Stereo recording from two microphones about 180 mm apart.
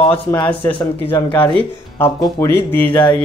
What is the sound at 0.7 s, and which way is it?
Speech, 25° left (ahead or behind).